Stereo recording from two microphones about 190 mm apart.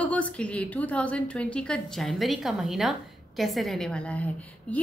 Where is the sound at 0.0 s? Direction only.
5° left (ahead or behind).